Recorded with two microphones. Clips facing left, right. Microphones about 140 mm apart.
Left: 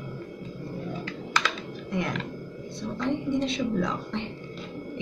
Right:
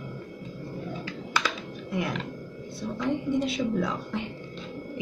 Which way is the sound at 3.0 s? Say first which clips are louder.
Even; 5° right (ahead or behind).